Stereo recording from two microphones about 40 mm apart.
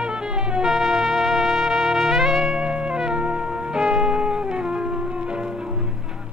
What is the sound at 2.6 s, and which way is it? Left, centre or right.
Music, right.